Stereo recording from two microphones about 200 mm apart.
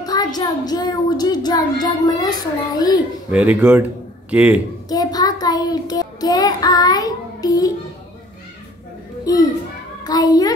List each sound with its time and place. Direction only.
0.0 s a child's voice: 20° left (ahead or behind)
3.3 s speech: 5° right (ahead or behind)
4.8 s child singing: 20° left (ahead or behind)
9.2 s a child's voice: 20° left (ahead or behind)